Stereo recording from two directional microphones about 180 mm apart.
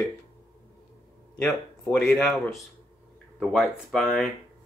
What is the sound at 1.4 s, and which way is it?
Speech, 5° left (ahead or behind).